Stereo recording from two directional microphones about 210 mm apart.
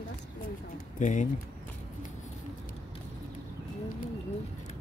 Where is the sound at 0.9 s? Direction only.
35° left (ahead or behind).